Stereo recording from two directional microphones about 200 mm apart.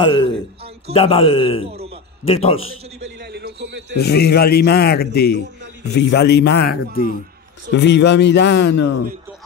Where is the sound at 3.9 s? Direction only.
55° left (ahead or behind).